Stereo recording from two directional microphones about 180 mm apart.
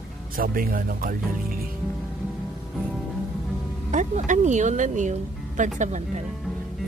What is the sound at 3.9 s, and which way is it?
Speech, 40° right (ahead or behind).